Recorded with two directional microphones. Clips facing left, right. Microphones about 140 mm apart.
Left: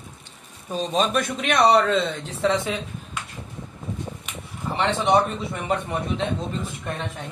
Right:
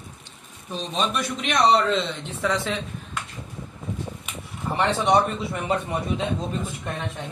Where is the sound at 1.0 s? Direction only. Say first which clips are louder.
Left 3 dB; 50° left (ahead or behind).